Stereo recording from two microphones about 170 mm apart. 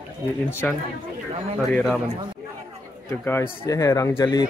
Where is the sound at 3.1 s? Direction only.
10° left (ahead or behind).